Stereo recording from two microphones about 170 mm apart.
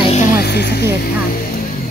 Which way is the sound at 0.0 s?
40° left (ahead or behind).